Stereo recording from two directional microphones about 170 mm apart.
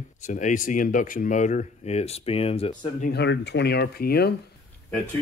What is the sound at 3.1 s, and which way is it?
Speech, 90° left.